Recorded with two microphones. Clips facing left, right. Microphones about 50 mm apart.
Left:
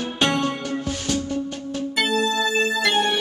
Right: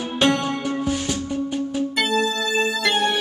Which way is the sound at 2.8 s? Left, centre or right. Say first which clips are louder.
Even; centre.